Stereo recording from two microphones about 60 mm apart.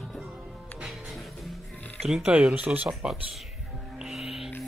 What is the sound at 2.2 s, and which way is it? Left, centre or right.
Speech, right.